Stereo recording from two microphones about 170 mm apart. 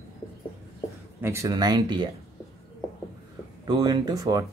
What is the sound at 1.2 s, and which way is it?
Speech, 15° right (ahead or behind).